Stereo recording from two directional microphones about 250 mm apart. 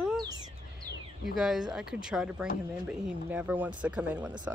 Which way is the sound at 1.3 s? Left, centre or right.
Centre.